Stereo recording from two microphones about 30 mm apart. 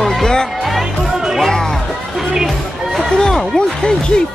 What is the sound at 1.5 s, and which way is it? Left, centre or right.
Speech, centre.